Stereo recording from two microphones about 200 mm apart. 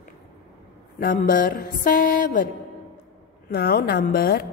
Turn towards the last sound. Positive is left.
turn(degrees=45)  # may be behind; listen again after turning